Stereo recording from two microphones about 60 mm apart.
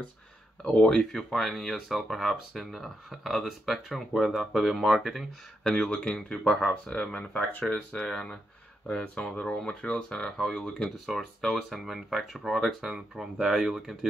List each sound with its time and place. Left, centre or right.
0.7 s speech: centre
5.6 s speech: centre
11.7 s speech: centre